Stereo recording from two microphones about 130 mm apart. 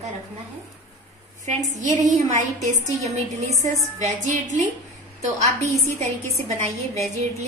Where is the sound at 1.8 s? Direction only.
65° right (ahead or behind).